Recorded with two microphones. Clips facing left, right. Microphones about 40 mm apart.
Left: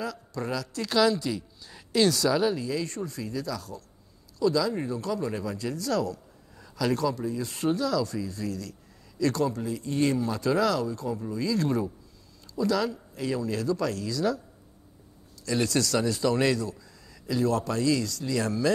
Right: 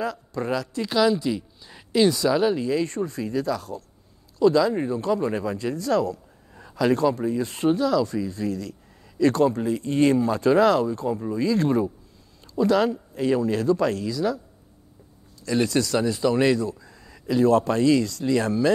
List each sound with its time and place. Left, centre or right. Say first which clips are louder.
0.0 s speech: right 5 dB; right
0.8 s speech: right 2 dB; centre
2.5 s speech: right 6 dB; right
14.0 s speech: right 2 dB; centre
15.4 s a man's voice: right 4 dB; right